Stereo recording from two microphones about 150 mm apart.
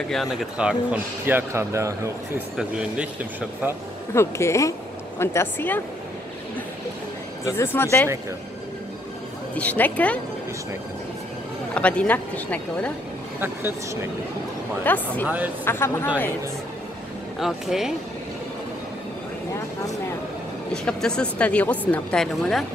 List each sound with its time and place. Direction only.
0.1 s speech: centre (ahead or behind)
1.2 s speech: 15° right (ahead or behind)
2.5 s speech: 5° right (ahead or behind)
4.1 s speech: 20° left (ahead or behind)
7.4 s speech: 15° left (ahead or behind)
9.6 s speech: 10° left (ahead or behind)
11.7 s speech: 10° left (ahead or behind)
13.4 s speech: 15° right (ahead or behind)
14.9 s speech: 10° left (ahead or behind)
15.2 s speech: 10° right (ahead or behind)
15.6 s speech: 15° left (ahead or behind)
17.4 s speech: centre (ahead or behind)
20.7 s speech: 5° left (ahead or behind)